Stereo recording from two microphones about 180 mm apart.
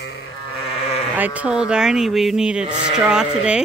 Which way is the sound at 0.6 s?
35° left (ahead or behind).